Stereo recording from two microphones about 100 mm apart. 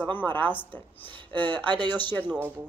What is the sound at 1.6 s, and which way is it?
Speech, 50° right (ahead or behind).